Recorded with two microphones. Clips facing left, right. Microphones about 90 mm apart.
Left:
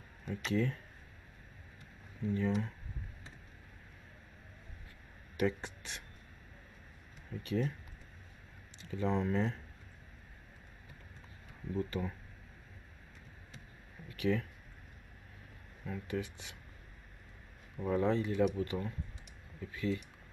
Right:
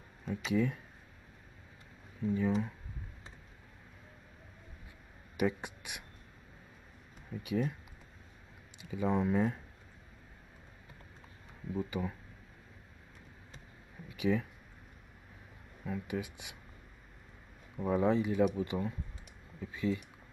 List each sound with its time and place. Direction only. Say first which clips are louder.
0.5 s speech: right 2 dB; 10° right (ahead or behind)
2.2 s speech: right 2 dB; 10° right (ahead or behind)
5.4 s speech: right 1 dB; 15° right (ahead or behind)
7.2 s speech: right 1 dB; 10° right (ahead or behind)
8.8 s speech: right 2 dB; 10° right (ahead or behind)
11.7 s speech: right 1 dB; 10° right (ahead or behind)
14.0 s a sound: right 1 dB; 15° right (ahead or behind)
15.8 s speech: right 1 dB; 10° right (ahead or behind)
17.7 s speech: right 2 dB; 15° right (ahead or behind)